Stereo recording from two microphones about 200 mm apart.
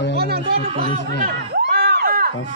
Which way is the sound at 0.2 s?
50° right (ahead or behind).